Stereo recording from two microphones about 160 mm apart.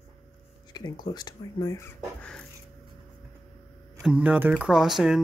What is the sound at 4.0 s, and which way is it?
Speech, 5° right (ahead or behind).